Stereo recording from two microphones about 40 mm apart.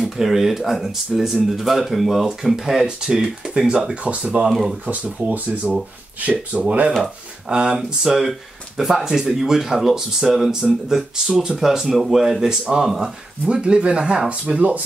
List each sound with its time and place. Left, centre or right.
0.0 s speech: centre; by 4.5 s right
4.5 s speech: centre
5.3 s speech: right
7.4 s speech: right
8.0 s speech: centre
13.5 s speech: right